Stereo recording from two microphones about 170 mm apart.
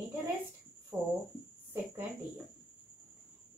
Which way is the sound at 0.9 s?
20° right (ahead or behind).